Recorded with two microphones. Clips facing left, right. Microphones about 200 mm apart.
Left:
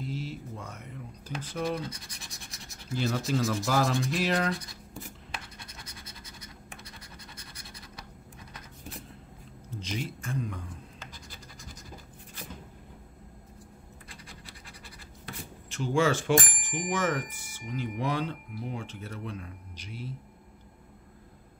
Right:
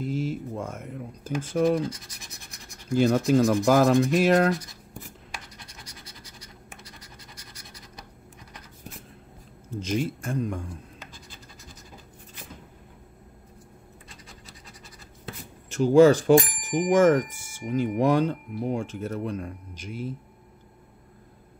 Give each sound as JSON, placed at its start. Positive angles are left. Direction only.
{"t": 0.0, "sound": "a sound", "side_deg": -50}
{"t": 1.4, "sound": "speech", "side_deg": -50}
{"t": 1.8, "sound": "speech", "side_deg": -25}
{"t": 2.9, "sound": "speech", "side_deg": -50}
{"t": 9.8, "sound": "speech", "side_deg": -45}
{"t": 15.7, "sound": "speech", "side_deg": -40}